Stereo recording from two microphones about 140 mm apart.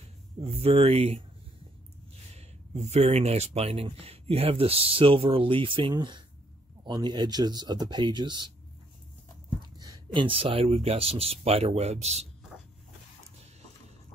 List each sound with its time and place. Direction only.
0.4 s speech: 45° right (ahead or behind)
2.3 s speech: 50° right (ahead or behind); by 8.5 s 30° right (ahead or behind)
9.6 s speech: 30° right (ahead or behind); by 12.3 s 50° right (ahead or behind)